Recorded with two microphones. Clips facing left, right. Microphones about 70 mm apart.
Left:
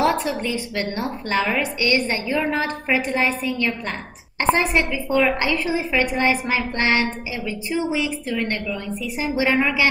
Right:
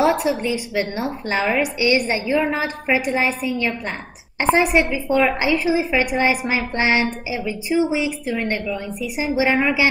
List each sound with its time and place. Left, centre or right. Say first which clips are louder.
0.0 s a woman's voice: right 2 dB; centre
2.3 s a woman's voice: right 2 dB; centre
2.6 s a woman's voice: right 1 dB; centre